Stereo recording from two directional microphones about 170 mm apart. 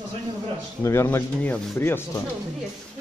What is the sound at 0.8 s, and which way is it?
Speech, 15° left (ahead or behind).